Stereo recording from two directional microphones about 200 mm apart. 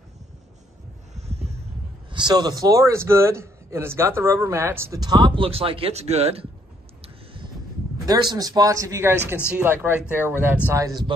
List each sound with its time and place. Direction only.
1.1 s a sound: 30° right (ahead or behind)
2.0 s a man's voice: 20° right (ahead or behind)
8.1 s a man's voice: 20° right (ahead or behind)